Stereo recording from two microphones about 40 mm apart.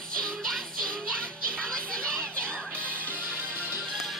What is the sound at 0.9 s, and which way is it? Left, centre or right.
Music, left.